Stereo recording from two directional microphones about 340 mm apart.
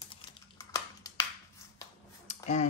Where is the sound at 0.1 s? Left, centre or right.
Centre.